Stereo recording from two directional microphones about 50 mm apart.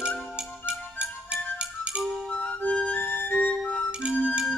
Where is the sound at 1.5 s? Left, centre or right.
Right.